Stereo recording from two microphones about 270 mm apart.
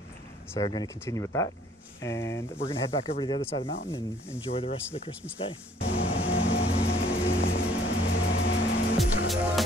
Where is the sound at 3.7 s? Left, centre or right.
Left.